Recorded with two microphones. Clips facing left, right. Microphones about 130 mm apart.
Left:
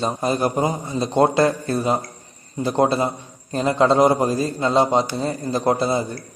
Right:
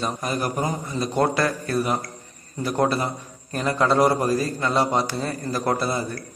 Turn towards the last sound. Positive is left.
turn(degrees=20)  # may be behind; listen again after turning